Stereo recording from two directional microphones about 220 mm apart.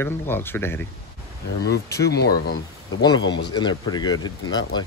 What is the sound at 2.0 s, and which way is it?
Speech, 45° left (ahead or behind).